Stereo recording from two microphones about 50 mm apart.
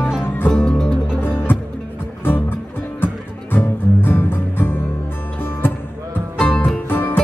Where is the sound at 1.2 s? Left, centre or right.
Left.